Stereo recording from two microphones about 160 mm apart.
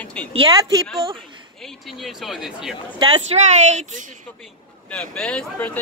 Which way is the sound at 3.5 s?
45° right (ahead or behind).